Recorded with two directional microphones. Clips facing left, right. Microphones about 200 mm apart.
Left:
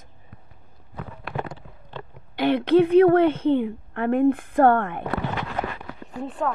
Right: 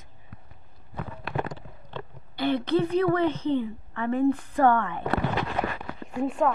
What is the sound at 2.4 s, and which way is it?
A woman's voice, 60° left (ahead or behind).